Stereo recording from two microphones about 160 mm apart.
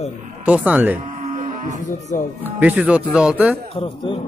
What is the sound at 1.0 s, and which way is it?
Livestock, 45° right (ahead or behind).